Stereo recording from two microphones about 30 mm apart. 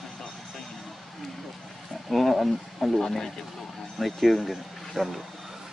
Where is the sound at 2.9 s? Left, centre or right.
Centre.